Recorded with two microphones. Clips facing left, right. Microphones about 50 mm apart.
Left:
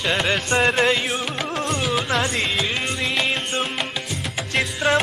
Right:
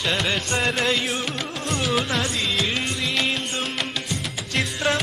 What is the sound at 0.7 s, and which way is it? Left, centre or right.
Music, left.